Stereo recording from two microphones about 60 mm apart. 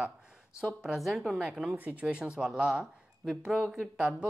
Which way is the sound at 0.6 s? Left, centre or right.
Centre.